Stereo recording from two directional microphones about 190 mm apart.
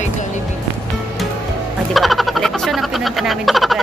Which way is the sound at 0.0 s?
40° left (ahead or behind).